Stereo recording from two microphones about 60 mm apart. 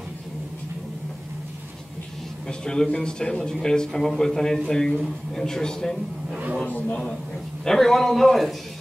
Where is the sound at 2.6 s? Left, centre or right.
Centre.